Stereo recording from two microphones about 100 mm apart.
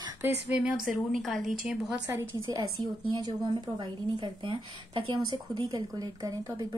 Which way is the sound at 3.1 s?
50° right (ahead or behind).